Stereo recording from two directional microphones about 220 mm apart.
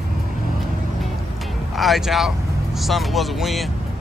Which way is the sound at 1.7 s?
Centre (ahead or behind).